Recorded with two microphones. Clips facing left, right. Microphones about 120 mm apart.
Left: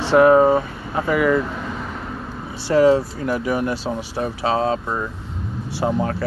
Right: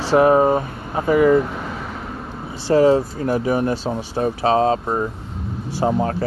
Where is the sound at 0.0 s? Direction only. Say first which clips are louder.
Left 1 dB; 40° right (ahead or behind).